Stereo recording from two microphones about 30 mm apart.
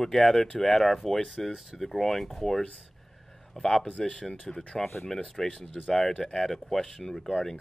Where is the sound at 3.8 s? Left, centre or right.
Left.